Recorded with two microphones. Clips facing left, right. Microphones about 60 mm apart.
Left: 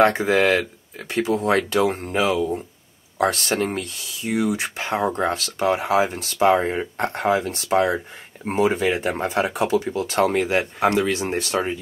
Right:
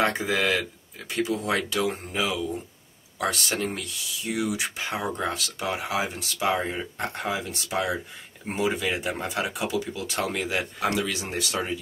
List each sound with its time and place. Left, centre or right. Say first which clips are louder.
0.2 s speech: left 7 dB; left